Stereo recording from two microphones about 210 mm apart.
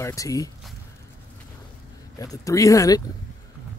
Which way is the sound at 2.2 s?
15° left (ahead or behind).